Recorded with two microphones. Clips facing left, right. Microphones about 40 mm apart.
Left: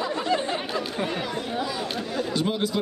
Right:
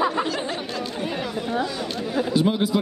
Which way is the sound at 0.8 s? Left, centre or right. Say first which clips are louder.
Even; centre.